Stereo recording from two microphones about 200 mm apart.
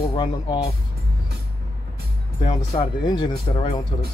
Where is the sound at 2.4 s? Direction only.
20° left (ahead or behind).